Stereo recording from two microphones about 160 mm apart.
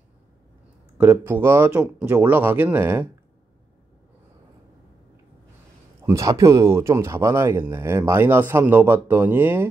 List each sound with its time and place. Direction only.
0.9 s speech: 10° right (ahead or behind)
6.0 s speech: 20° right (ahead or behind)